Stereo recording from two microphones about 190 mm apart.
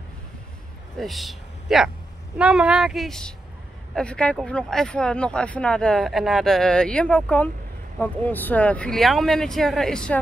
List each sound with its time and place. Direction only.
0.9 s speech: centre (ahead or behind)